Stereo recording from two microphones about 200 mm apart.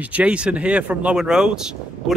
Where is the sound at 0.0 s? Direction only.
5° right (ahead or behind).